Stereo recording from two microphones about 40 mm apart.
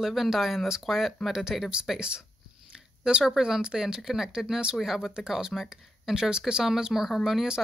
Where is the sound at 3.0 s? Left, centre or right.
Centre.